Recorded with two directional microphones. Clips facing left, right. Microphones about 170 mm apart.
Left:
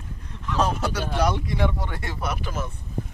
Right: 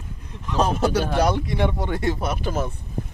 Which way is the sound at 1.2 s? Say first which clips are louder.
Right 2 dB; 25° right (ahead or behind).